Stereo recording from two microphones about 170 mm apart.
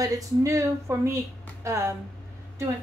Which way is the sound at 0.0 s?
20° right (ahead or behind).